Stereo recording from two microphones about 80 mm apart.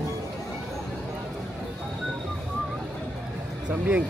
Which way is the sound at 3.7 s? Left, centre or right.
Centre.